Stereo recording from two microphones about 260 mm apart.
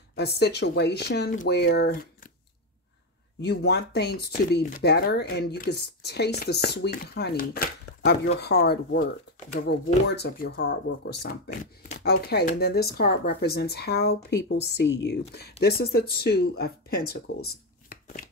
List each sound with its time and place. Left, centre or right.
0.1 s speech: left
3.3 s speech: left